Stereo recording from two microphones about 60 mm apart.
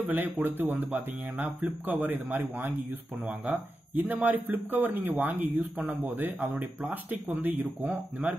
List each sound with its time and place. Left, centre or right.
0.0 s speech: right
2.3 s a man's voice: right
3.3 s speech: right